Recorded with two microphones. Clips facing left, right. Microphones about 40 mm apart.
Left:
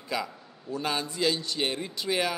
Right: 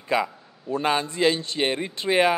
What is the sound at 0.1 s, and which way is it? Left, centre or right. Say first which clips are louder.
Speech: right 8 dB; right.